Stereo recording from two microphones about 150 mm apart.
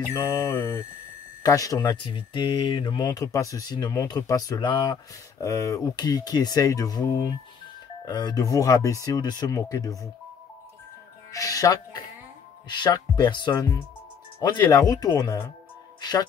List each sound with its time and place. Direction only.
0.1 s speech: 20° left (ahead or behind)
11.3 s speech: 20° left (ahead or behind)